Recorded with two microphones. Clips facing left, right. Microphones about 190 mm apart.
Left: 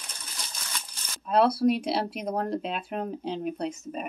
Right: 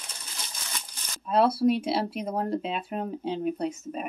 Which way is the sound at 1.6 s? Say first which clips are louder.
Even; centre (ahead or behind).